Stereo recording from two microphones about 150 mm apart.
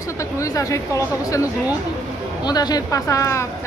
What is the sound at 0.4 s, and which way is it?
Speech, 20° left (ahead or behind).